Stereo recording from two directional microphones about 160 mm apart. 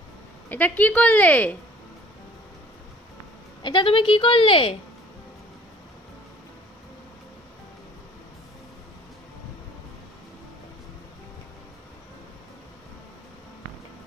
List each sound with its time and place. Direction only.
0.5 s a woman's voice: 10° left (ahead or behind)
3.6 s a woman's voice: 30° left (ahead or behind)